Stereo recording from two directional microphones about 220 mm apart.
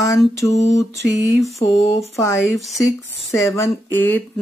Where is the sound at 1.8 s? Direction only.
30° left (ahead or behind).